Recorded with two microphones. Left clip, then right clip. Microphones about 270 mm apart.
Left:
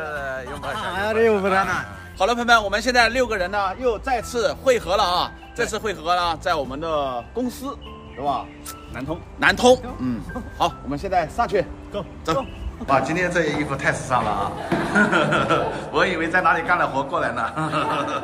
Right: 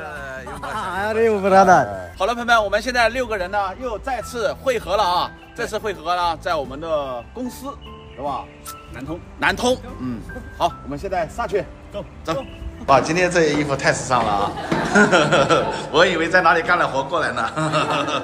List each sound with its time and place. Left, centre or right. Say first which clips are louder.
0.0 s a sound: left 3 dB; centre
1.4 s a man's voice: right 8 dB; centre
2.1 s a man's voice: even; centre
9.4 s a man's voice: left 4 dB; centre